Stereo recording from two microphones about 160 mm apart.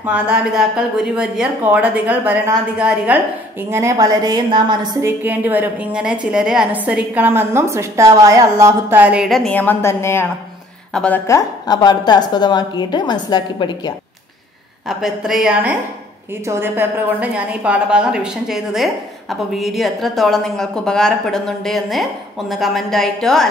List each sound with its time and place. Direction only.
0.0 s a woman's voice: 5° right (ahead or behind)
3.7 s a woman's voice: 20° right (ahead or behind)
5.2 s a woman's voice: 10° right (ahead or behind); by 13.9 s 25° left (ahead or behind)
14.9 s a woman's voice: centre (ahead or behind)